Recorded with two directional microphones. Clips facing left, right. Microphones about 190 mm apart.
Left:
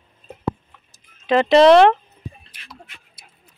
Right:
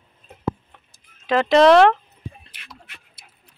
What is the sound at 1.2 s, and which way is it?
Speech, 20° left (ahead or behind).